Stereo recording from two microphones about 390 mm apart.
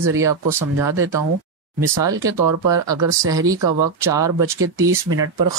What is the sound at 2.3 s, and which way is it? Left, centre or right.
Speech, right.